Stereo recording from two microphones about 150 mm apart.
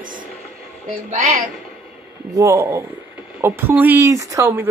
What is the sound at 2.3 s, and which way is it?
A man's voice, 20° right (ahead or behind).